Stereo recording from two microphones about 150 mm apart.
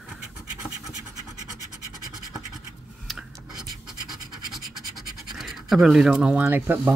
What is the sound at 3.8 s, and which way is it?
Scratch, centre (ahead or behind).